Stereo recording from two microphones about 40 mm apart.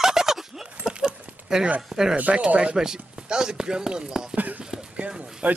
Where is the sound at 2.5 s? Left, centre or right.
Right.